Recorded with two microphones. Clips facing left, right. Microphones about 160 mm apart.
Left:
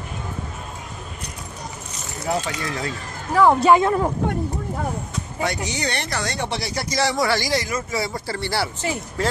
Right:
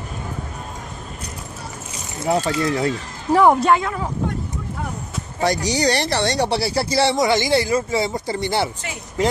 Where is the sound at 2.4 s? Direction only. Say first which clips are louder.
Right 7 dB; 35° right (ahead or behind).